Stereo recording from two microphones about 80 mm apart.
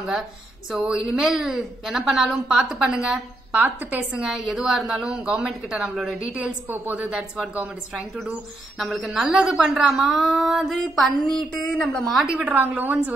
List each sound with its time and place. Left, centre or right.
0.7 s a woman's voice: centre
3.5 s a woman's voice: right
4.2 s a woman's voice: centre
7.1 s a woman's voice: centre
8.7 s a woman's voice: centre
11.5 s a woman's voice: centre
12.3 s a woman's voice: centre